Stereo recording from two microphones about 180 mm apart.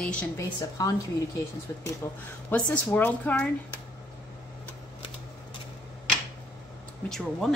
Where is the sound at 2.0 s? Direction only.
15° left (ahead or behind).